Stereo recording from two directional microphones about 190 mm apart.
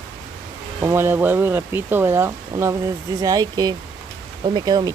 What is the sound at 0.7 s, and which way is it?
Speech, 15° right (ahead or behind).